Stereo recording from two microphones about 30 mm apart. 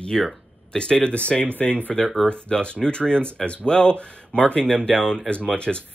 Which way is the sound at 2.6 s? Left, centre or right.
Left.